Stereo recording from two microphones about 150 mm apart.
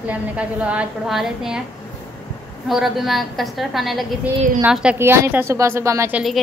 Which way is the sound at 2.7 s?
Centre (ahead or behind).